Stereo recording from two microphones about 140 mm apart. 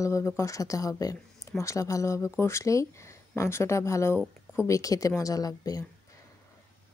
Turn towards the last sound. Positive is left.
turn(degrees=25)  # may be behind; listen again after turning